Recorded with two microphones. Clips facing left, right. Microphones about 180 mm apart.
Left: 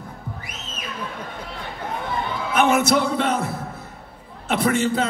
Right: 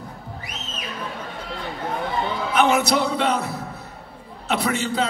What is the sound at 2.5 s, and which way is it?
A man's voice, 50° left (ahead or behind).